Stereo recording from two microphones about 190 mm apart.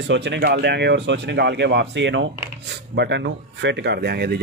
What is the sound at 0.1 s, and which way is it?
Speech, 65° right (ahead or behind).